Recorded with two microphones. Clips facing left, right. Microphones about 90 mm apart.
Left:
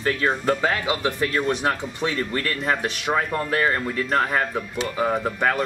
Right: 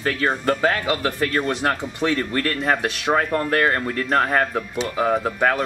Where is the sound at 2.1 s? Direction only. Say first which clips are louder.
Right 3 dB; 50° right (ahead or behind).